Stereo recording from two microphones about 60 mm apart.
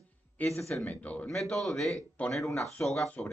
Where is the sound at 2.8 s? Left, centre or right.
Left.